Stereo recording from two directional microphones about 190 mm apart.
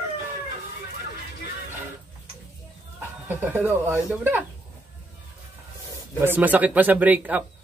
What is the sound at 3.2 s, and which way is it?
Speech, 10° right (ahead or behind).